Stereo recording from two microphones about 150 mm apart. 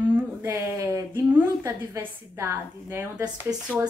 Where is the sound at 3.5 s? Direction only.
25° right (ahead or behind).